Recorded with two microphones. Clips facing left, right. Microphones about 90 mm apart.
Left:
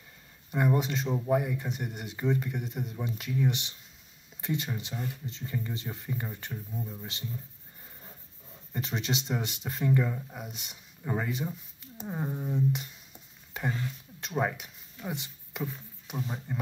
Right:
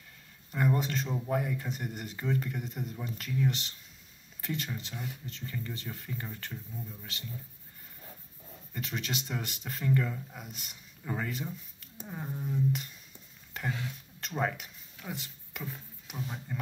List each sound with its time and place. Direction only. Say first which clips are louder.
0.5 s speech: left 2 dB; 5° left (ahead or behind)
8.7 s speech: left 4 dB; 25° left (ahead or behind)
9.6 s speech: left 2 dB; 10° left (ahead or behind)
13.5 s a sound: left 3 dB; 10° left (ahead or behind)
14.2 s speech: left 2 dB; 5° left (ahead or behind)